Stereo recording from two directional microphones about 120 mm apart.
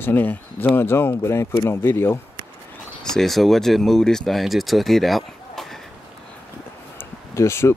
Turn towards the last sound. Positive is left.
turn(degrees=20)  # may be behind; listen again after turning